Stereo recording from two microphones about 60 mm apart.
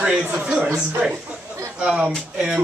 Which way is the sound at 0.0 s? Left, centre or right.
Centre.